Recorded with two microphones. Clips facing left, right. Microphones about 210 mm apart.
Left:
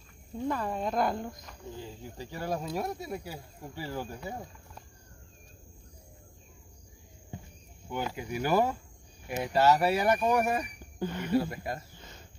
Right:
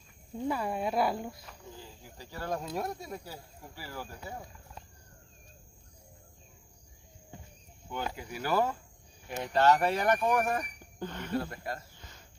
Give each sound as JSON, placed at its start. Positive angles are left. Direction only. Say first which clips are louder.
{"t": 0.5, "sound": "speech", "louder": "even", "side_deg": -10}
{"t": 2.1, "sound": "speech", "louder": "left 2 dB", "side_deg": 15}
{"t": 2.5, "sound": "speech", "louder": "left 1 dB", "side_deg": 5}
{"t": 3.7, "sound": "speech", "louder": "left 6 dB", "side_deg": 20}
{"t": 7.9, "sound": "speech", "louder": "left 3 dB", "side_deg": 15}